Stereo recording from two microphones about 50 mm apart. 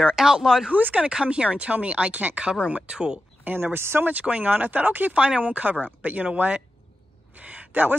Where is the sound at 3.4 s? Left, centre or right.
Right.